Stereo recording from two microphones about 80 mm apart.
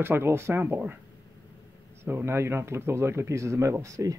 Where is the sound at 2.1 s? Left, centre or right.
Right.